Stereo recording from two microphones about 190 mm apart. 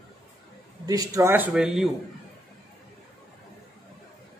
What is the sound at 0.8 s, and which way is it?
A man's voice, 20° right (ahead or behind).